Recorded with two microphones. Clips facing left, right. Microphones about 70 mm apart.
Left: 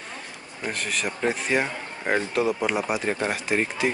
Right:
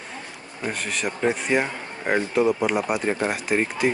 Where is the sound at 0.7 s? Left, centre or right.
Centre.